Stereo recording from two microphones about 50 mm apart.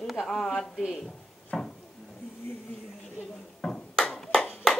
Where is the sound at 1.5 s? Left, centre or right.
Centre.